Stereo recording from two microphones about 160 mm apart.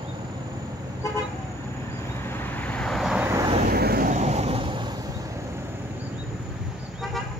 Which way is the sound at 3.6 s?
75° right (ahead or behind).